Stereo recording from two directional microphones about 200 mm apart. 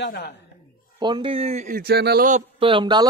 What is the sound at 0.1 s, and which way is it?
Speech, 55° left (ahead or behind).